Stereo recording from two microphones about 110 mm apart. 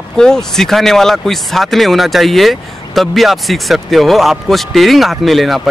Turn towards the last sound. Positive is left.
turn(degrees=0)  # may be behind; listen again after turning